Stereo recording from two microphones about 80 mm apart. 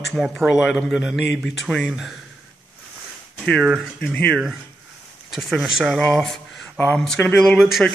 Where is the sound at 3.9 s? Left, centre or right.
Centre.